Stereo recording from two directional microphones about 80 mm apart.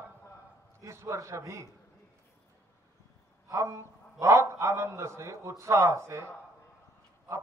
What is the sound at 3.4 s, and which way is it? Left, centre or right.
A man's voice, right.